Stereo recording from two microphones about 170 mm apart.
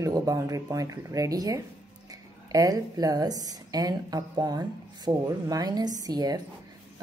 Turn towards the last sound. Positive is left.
turn(degrees=-20)  # may be behind; listen again after turning